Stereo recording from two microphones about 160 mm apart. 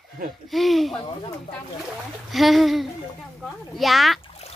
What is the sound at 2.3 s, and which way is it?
A child's voice, centre (ahead or behind).